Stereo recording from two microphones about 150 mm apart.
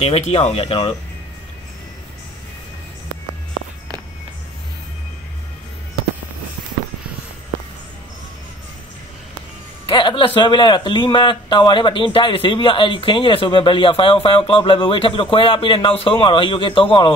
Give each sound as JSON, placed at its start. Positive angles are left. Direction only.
{"t": 0.0, "sound": "a man's voice", "side_deg": 45}
{"t": 9.8, "sound": "a man's voice", "side_deg": 30}